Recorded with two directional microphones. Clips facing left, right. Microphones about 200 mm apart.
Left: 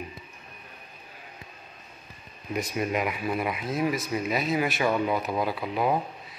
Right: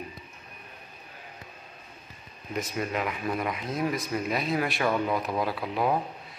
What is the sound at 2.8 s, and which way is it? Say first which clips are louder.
Speech: left 3 dB; 15° left (ahead or behind).